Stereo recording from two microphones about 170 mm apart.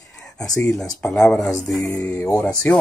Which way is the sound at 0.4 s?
20° left (ahead or behind).